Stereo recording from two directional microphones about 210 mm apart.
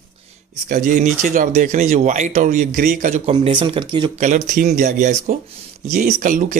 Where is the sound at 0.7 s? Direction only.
40° right (ahead or behind); by 4.1 s 25° right (ahead or behind).